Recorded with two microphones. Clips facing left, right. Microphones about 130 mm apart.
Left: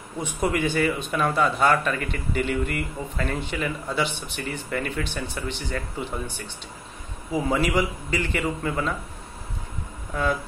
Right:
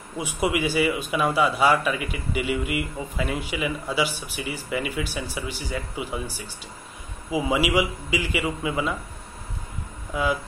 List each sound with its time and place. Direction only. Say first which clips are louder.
0.2 s speech: even; 5° right (ahead or behind)
10.1 s speech: right 1 dB; 10° right (ahead or behind)